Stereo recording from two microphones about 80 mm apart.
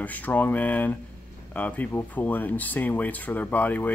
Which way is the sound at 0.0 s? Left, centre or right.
Left.